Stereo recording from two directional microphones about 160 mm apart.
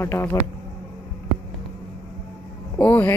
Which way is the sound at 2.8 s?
10° left (ahead or behind).